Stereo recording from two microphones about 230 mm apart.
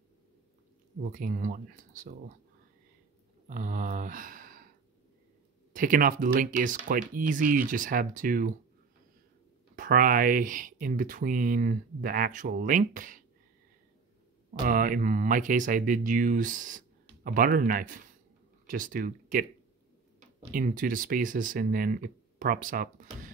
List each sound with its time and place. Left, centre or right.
1.0 s speech: right
3.4 s speech: right
5.7 s speech: right
9.8 s speech: right
14.7 s speech: right
20.5 s speech: right